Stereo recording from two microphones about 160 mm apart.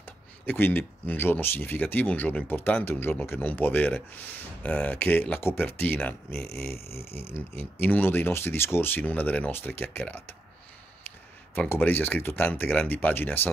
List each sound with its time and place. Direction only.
0.0 s speech: 10° left (ahead or behind)
11.5 s speech: 10° left (ahead or behind)